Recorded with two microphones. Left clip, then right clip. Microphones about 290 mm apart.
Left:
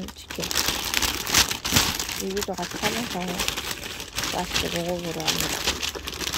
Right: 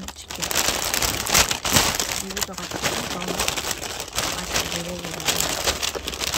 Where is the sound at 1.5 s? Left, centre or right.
Right.